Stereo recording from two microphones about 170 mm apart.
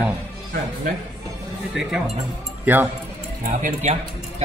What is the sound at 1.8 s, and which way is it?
Speech, 5° right (ahead or behind).